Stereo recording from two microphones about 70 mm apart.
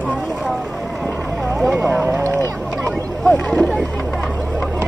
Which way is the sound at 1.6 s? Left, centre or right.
Right.